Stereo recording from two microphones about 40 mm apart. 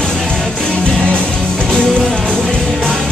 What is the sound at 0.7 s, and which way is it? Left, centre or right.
Music, left.